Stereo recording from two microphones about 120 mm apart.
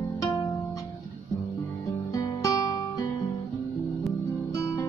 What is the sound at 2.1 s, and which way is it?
Guitar, 30° left (ahead or behind).